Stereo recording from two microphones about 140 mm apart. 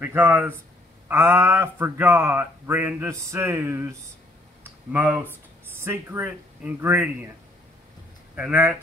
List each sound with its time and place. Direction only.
0.0 s speech: 15° right (ahead or behind)
4.9 s speech: 15° right (ahead or behind)
8.4 s speech: 10° right (ahead or behind)